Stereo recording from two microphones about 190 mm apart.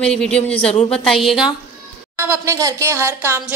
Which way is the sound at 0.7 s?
30° left (ahead or behind).